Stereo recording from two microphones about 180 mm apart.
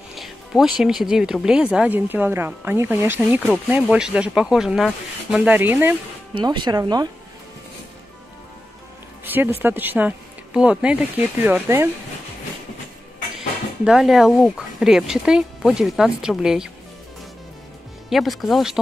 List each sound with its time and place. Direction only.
0.1 s speech: centre (ahead or behind)
6.3 s speech: 25° right (ahead or behind)
9.2 s speech: 10° right (ahead or behind)
13.8 s speech: centre (ahead or behind)
18.1 s speech: centre (ahead or behind)